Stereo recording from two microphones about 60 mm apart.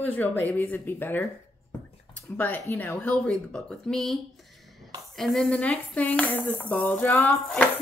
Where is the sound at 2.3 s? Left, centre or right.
Left.